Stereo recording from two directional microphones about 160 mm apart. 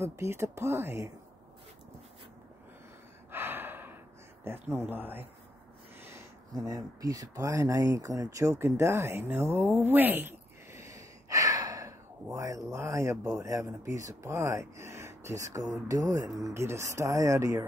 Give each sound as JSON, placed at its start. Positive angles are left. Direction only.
{"t": 0.0, "sound": "speech", "side_deg": -15}
{"t": 3.3, "sound": "gasp", "side_deg": -15}
{"t": 4.5, "sound": "speech", "side_deg": -15}